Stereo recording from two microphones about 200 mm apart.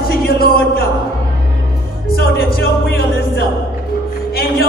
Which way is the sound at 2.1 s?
50° left (ahead or behind).